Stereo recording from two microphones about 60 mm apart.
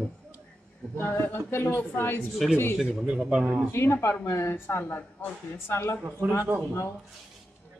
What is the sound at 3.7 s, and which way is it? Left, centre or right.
Speech, left.